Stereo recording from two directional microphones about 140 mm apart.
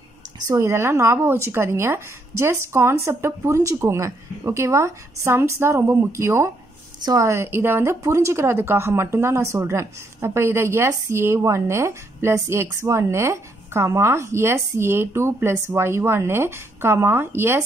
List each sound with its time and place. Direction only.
0.5 s speech: 20° right (ahead or behind)